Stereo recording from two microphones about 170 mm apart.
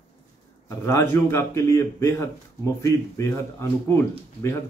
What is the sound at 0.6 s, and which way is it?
Speech, 15° left (ahead or behind).